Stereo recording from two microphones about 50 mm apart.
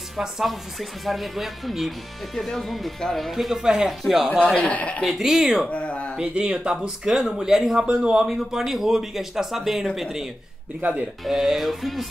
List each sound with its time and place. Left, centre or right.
0.2 s speech: centre
4.6 s speech: left
5.2 s speech: centre
5.7 s speech: left
6.1 s speech: centre
10.8 s speech: right
11.2 s speech: centre